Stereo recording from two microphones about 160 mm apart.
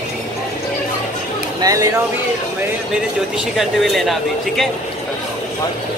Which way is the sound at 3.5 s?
Centre (ahead or behind).